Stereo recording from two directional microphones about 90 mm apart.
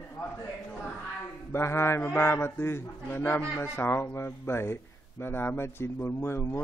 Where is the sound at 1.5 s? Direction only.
30° left (ahead or behind).